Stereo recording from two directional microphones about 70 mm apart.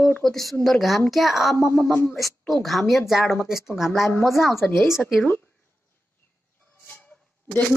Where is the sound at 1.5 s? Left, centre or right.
Left.